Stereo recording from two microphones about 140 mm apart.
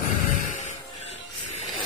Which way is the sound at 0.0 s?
65° left (ahead or behind).